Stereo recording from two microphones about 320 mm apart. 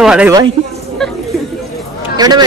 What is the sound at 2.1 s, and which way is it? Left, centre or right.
Speech, centre.